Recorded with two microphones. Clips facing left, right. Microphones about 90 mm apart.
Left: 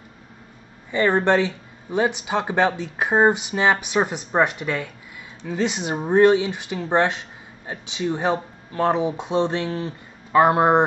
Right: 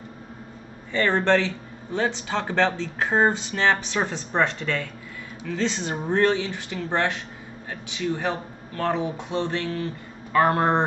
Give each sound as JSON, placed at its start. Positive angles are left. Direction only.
{"t": 0.9, "sound": "speech", "side_deg": 15}